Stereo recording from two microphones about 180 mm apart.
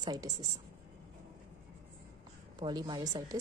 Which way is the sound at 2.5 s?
25° right (ahead or behind).